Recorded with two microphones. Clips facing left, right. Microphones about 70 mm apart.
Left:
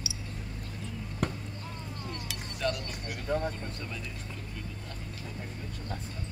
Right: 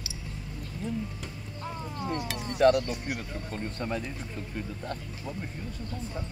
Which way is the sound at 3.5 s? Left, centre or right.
Right.